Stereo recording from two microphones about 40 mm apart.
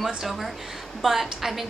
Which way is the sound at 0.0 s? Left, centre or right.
Centre.